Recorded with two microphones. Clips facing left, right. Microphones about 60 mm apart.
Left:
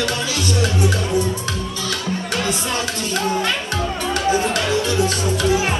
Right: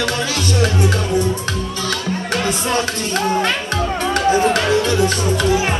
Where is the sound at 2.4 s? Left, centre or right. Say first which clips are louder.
Right 3 dB; right.